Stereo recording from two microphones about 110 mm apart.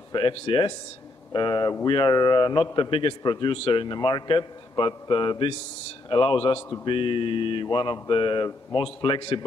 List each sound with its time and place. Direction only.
0.1 s a man's voice: 50° left (ahead or behind)